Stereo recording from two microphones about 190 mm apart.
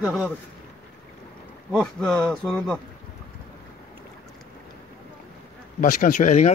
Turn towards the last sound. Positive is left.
turn(degrees=40)  # may be behind; listen again after turning